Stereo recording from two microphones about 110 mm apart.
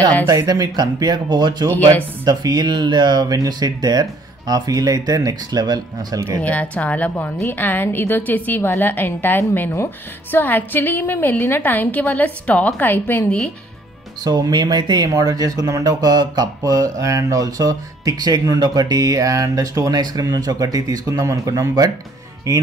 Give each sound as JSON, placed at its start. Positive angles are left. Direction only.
{"t": 0.3, "sound": "speech", "side_deg": -35}
{"t": 1.7, "sound": "a woman's voice", "side_deg": 15}
{"t": 2.2, "sound": "speech", "side_deg": -35}
{"t": 6.4, "sound": "a woman's voice", "side_deg": 10}
{"t": 14.2, "sound": "speech", "side_deg": -40}